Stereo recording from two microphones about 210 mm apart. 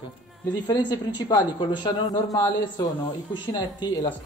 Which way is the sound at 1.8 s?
20° left (ahead or behind).